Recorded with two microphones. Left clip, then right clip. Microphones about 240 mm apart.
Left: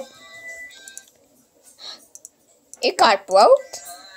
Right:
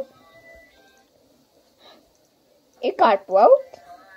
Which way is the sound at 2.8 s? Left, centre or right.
Centre.